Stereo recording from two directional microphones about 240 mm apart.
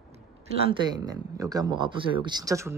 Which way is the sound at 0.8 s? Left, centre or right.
Centre.